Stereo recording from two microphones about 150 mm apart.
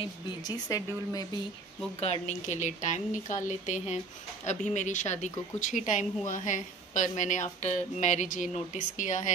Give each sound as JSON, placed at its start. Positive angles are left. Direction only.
{"t": 0.0, "sound": "speech", "side_deg": 30}
{"t": 2.0, "sound": "a woman's voice", "side_deg": 45}